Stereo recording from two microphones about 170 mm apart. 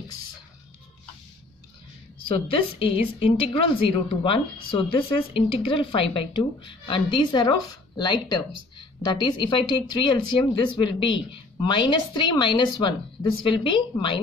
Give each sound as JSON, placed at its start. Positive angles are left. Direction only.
{"t": 2.2, "sound": "a woman's voice", "side_deg": 35}